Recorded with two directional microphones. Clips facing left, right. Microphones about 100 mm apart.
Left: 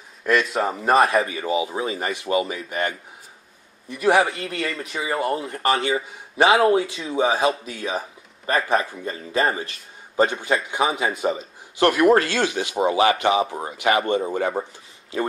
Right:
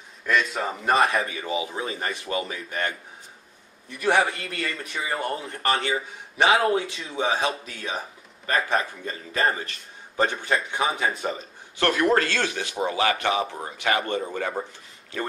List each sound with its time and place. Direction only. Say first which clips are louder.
0.2 s a man's voice: left 4 dB; 5° left (ahead or behind)
4.0 s speech: left 4 dB; 5° left (ahead or behind)
7.2 s a man's voice: left 4 dB; 35° left (ahead or behind)
7.4 s a man's voice: left 6 dB; 5° left (ahead or behind); by 14.6 s 20° left (ahead or behind)